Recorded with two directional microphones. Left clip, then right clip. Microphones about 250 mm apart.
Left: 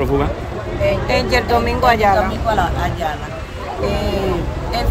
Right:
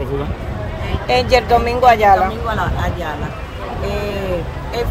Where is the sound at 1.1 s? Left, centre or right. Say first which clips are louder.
Right 8 dB; right.